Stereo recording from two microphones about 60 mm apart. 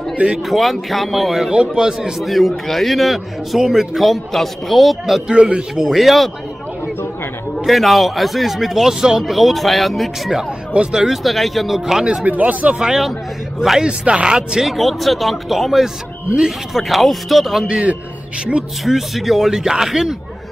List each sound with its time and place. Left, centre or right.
0.4 s a man's voice: centre
5.4 s speech: centre
5.9 s a man's voice: centre
7.6 s a man's voice: centre
10.7 s speech: centre
12.3 s speech: right
12.7 s a man's voice: centre
13.8 s speech: centre
14.7 s a man's voice: centre
17.6 s speech: centre
18.9 s a man's voice: centre